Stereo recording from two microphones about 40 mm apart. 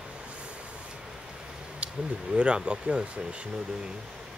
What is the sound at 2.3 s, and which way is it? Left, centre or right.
Speech, right.